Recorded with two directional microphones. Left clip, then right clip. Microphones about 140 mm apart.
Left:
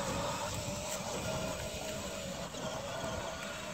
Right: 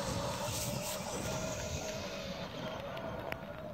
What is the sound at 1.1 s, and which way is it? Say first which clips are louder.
Music: left 1 dB; centre (ahead or behind).